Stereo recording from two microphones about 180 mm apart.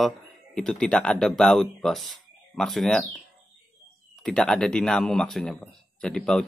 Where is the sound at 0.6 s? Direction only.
5° left (ahead or behind).